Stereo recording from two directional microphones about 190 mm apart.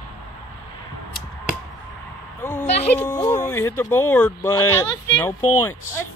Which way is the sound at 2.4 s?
10° left (ahead or behind).